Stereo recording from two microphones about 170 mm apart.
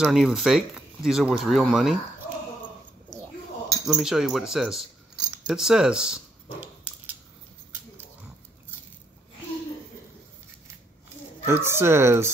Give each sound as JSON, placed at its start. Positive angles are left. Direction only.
{"t": 0.0, "sound": "speech", "side_deg": -5}
{"t": 3.6, "sound": "cutlery", "side_deg": -20}
{"t": 3.9, "sound": "speech", "side_deg": -5}
{"t": 5.5, "sound": "a sound", "side_deg": -5}
{"t": 11.4, "sound": "speech", "side_deg": -15}